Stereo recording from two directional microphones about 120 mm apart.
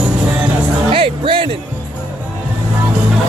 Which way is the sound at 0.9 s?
45° right (ahead or behind).